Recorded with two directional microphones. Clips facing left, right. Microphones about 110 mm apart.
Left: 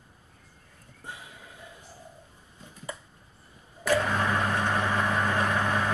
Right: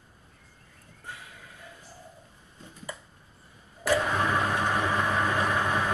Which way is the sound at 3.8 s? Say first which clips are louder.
Even; 10° right (ahead or behind).